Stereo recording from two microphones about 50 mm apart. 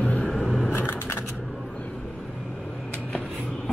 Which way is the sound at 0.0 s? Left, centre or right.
Left.